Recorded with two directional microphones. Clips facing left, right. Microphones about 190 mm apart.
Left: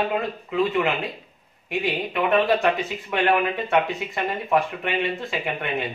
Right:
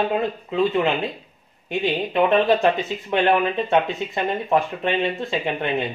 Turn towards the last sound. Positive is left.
turn(degrees=-30)  # may be behind; listen again after turning